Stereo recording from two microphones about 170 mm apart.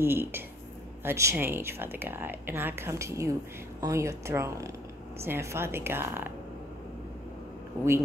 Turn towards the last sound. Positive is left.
turn(degrees=-15)  # may be behind; listen again after turning